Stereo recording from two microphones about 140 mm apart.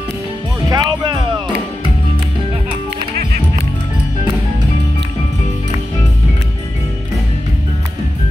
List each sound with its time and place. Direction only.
0.7 s music: 30° right (ahead or behind)